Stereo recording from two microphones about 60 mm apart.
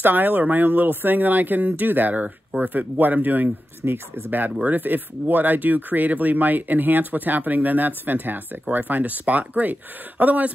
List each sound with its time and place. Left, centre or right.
0.0 s speech: right